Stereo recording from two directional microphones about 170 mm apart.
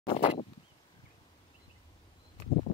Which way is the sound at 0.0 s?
30° left (ahead or behind).